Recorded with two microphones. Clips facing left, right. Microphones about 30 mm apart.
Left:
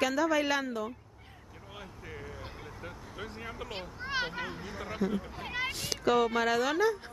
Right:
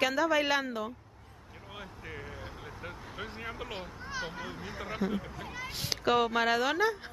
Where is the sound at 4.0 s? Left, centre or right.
Left.